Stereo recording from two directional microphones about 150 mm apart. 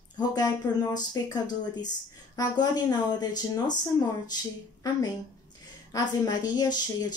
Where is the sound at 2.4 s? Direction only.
25° left (ahead or behind).